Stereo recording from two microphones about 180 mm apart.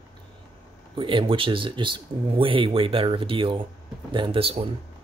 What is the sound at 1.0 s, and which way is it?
Speech, 25° right (ahead or behind).